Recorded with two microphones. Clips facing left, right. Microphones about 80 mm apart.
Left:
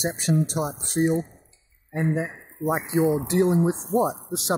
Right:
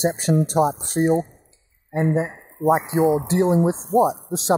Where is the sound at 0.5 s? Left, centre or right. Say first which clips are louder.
Right 9 dB; right.